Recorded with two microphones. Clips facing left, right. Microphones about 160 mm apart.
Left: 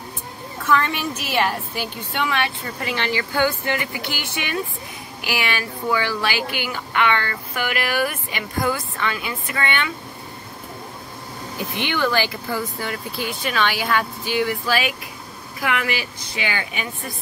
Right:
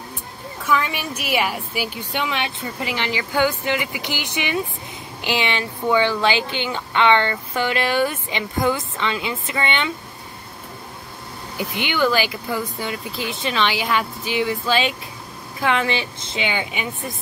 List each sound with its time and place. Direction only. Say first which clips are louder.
0.7 s a woman's voice: left 1 dB; 10° right (ahead or behind)
11.5 s a woman's voice: right 1 dB; 15° right (ahead or behind)